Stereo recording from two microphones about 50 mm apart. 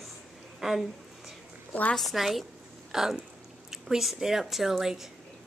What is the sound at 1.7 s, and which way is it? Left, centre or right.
Speech, left.